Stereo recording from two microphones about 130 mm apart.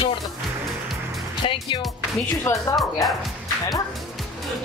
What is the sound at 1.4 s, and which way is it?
Music, 40° left (ahead or behind).